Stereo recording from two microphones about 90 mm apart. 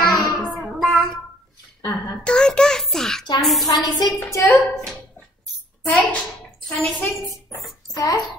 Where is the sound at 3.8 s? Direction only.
45° left (ahead or behind).